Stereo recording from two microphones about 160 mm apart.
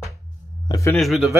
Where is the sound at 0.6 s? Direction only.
20° left (ahead or behind).